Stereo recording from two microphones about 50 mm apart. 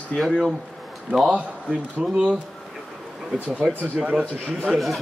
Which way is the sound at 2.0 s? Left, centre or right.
Centre.